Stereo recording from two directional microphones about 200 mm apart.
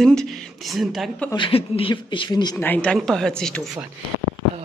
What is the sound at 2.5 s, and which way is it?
Speech, 10° left (ahead or behind).